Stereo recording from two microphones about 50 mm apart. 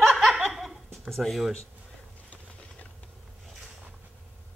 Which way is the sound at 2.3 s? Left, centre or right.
Left.